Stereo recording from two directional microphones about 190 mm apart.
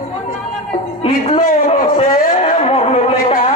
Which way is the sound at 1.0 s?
30° left (ahead or behind).